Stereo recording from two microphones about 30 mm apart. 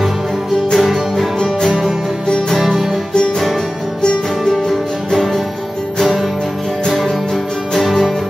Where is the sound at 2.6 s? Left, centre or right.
Centre.